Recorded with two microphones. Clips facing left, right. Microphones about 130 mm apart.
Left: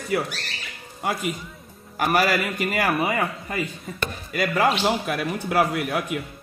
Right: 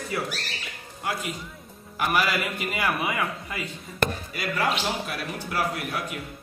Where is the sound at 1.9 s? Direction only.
40° left (ahead or behind).